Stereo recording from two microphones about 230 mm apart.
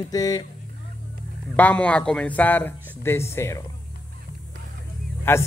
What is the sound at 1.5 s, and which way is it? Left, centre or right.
Speech, centre.